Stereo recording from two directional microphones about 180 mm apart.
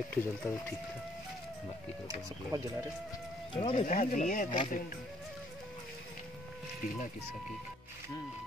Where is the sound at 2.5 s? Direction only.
20° right (ahead or behind).